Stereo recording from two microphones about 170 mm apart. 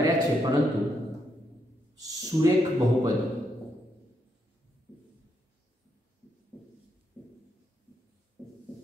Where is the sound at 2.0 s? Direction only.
20° right (ahead or behind).